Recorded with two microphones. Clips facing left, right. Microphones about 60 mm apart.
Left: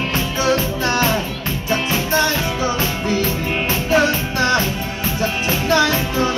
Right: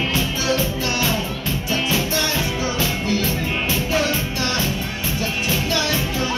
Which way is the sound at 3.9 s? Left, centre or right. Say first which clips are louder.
Left 8 dB; left.